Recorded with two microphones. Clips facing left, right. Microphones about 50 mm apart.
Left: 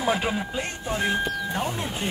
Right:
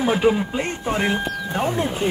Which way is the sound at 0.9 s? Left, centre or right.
Right.